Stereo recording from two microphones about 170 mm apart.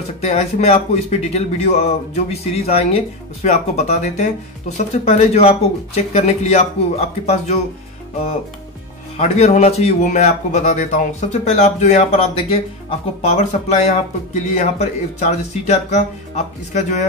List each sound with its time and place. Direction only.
0.2 s speech: 40° left (ahead or behind)
9.1 s speech: 40° left (ahead or behind)